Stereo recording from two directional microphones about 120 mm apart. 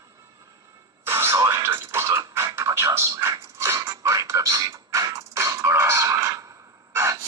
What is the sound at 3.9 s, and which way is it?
Music, 25° right (ahead or behind).